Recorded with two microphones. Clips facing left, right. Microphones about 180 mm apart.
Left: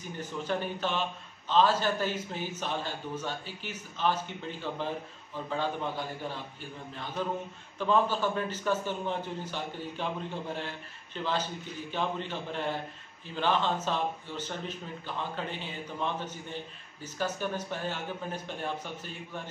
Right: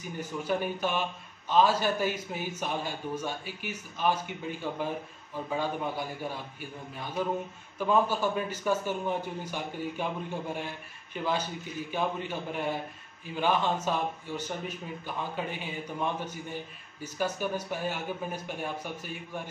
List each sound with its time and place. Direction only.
0.2 s a man's voice: 10° right (ahead or behind)